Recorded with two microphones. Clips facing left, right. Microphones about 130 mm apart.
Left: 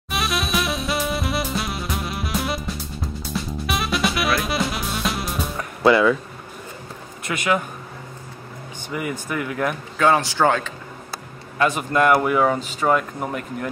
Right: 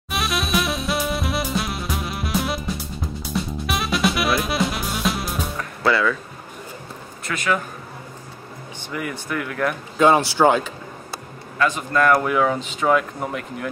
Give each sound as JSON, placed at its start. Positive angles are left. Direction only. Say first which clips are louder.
{"t": 0.1, "sound": "music", "louder": "right 1 dB", "side_deg": 0}
{"t": 5.9, "sound": "a man's voice", "louder": "left 4 dB", "side_deg": 20}
{"t": 7.3, "sound": "a man's voice", "louder": "left 1 dB", "side_deg": 10}
{"t": 8.9, "sound": "a man's voice", "louder": "left 1 dB", "side_deg": 5}
{"t": 9.9, "sound": "speech", "louder": "right 2 dB", "side_deg": -15}
{"t": 11.5, "sound": "a man's voice", "louder": "left 1 dB", "side_deg": 20}
{"t": 12.1, "sound": "speech", "louder": "left 1 dB", "side_deg": 5}